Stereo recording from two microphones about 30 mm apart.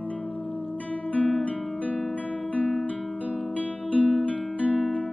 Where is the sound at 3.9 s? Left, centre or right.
Left.